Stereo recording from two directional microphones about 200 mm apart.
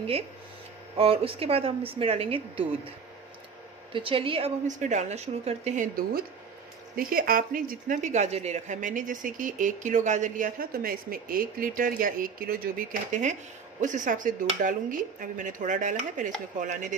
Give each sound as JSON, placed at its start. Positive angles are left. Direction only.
{"t": 0.9, "sound": "a woman's voice", "side_deg": -30}
{"t": 3.9, "sound": "a woman's voice", "side_deg": -25}